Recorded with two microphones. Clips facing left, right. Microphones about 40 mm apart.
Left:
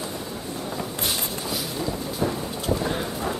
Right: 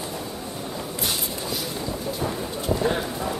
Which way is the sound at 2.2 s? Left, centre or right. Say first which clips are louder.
Left 4 dB; centre.